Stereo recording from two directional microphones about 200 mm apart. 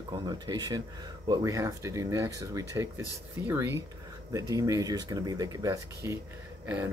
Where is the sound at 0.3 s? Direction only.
20° right (ahead or behind).